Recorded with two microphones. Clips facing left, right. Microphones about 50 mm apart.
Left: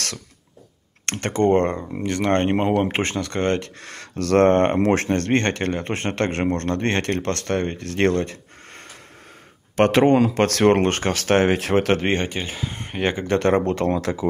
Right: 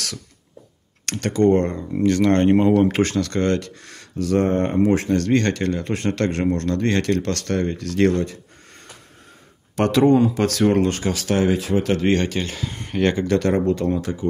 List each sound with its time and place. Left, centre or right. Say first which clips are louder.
1.0 s speech: right 2 dB; left
1.9 s speech: right 4 dB; left
3.8 s speech: right 1 dB; left
5.1 s speech: right 1 dB; left
12.1 s speech: right 3 dB; centre
13.3 s speech: even; left